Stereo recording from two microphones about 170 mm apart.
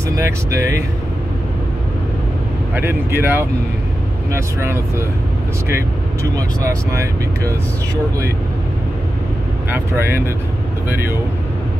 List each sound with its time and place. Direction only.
0.2 s speech: 20° right (ahead or behind)
2.7 s speech: 10° right (ahead or behind)
6.3 s speech: 20° right (ahead or behind)
9.7 s speech: 15° right (ahead or behind)